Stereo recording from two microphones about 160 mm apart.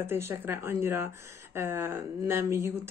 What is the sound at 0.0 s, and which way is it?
Speech, 15° right (ahead or behind).